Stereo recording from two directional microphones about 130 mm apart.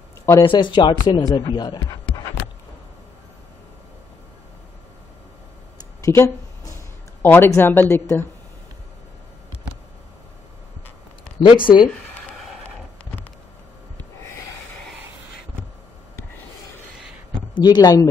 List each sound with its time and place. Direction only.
0.4 s speech: 40° left (ahead or behind)
6.0 s a sound: 25° left (ahead or behind)
7.2 s a woman's voice: 15° left (ahead or behind)
11.4 s speech: 40° left (ahead or behind)
11.9 s a sound: centre (ahead or behind)
17.6 s speech: 30° left (ahead or behind)